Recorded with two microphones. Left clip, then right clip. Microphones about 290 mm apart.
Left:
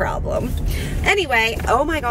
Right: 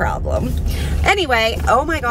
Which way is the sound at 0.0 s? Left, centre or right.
Centre.